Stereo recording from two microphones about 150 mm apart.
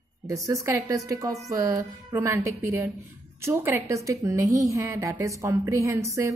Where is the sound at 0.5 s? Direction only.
20° right (ahead or behind).